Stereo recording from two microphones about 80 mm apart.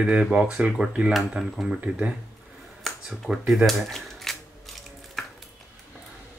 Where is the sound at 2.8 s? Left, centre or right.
Centre.